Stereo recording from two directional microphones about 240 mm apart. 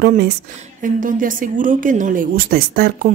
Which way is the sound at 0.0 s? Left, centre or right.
Right.